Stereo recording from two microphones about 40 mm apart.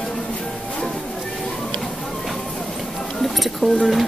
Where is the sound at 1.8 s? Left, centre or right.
Centre.